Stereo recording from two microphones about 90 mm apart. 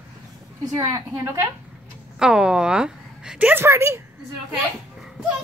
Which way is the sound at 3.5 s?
25° right (ahead or behind).